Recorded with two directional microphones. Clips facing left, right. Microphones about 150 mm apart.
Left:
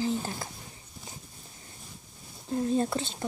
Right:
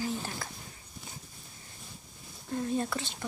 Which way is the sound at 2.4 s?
30° left (ahead or behind).